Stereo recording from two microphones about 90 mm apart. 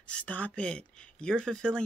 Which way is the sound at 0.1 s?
15° left (ahead or behind).